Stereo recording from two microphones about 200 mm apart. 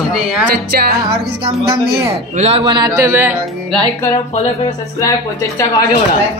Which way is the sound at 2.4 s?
25° right (ahead or behind).